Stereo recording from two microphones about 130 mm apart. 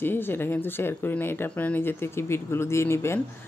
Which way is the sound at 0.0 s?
15° left (ahead or behind).